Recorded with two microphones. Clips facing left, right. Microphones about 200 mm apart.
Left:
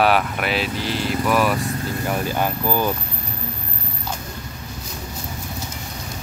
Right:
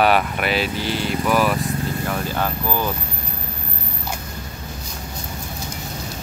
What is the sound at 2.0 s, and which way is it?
Speech, 15° left (ahead or behind).